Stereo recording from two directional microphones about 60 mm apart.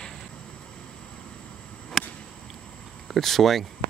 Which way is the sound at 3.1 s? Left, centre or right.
Centre.